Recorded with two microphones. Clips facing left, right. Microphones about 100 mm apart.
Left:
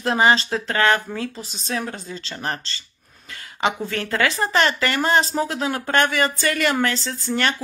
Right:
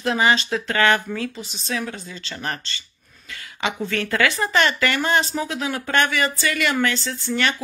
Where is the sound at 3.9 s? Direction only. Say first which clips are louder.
Right 1 dB; 30° left (ahead or behind); by 7.6 s 45° left (ahead or behind).